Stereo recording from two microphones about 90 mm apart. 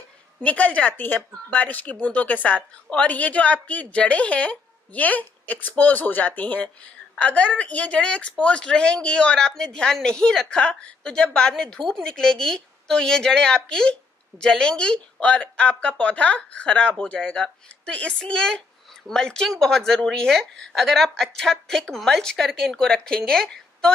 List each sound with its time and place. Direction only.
0.4 s a woman's voice: 15° left (ahead or behind)